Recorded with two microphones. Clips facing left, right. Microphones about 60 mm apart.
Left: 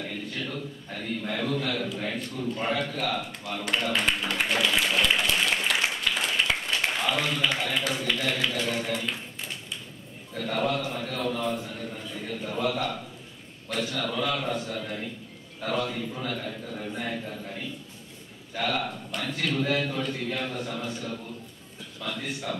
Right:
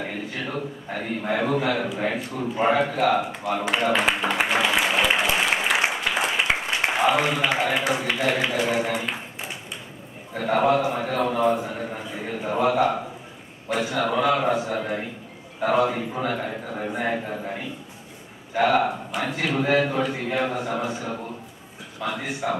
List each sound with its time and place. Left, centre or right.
0.2 s a man's voice: centre
3.0 s a sound: centre
6.4 s a man's voice: right
14.8 s a man's voice: right